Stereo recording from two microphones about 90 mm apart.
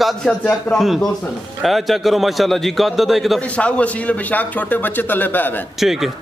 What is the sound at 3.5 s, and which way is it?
A man's voice, 15° left (ahead or behind).